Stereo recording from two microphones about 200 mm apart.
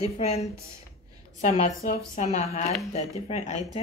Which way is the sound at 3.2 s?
35° left (ahead or behind).